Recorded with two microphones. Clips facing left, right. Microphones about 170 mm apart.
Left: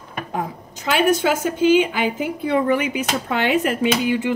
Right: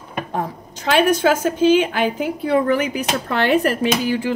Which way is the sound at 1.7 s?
15° left (ahead or behind).